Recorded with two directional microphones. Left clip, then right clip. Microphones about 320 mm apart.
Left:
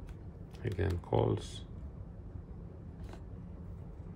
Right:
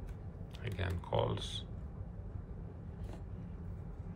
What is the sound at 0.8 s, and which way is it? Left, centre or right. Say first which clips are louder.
Speech: left 3 dB; left.